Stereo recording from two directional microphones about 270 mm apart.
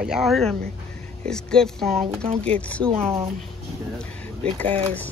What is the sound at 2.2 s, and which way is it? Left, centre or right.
Speech, right.